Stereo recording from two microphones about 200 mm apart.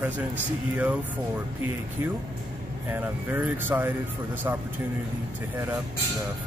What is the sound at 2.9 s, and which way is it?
Speech, 10° right (ahead or behind).